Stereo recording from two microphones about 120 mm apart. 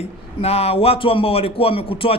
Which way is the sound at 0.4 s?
55° left (ahead or behind).